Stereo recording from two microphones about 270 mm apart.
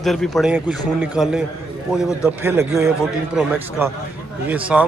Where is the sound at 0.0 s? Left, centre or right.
Centre.